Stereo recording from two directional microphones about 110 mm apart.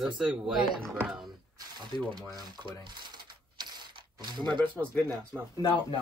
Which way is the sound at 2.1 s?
40° right (ahead or behind).